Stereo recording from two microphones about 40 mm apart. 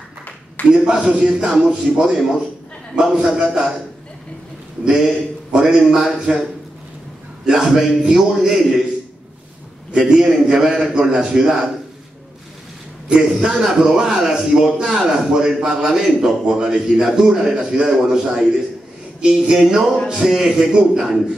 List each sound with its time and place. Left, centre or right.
0.7 s a sound: centre
1.8 s a man's voice: centre
3.0 s a sound: centre
4.8 s a man's voice: centre
7.4 s a man's voice: centre
9.9 s a man's voice: centre
11.0 s a sound: right
13.2 s a man's voice: centre
13.7 s a man's voice: centre